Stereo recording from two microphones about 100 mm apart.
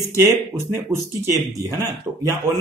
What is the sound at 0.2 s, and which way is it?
Speech, 25° right (ahead or behind).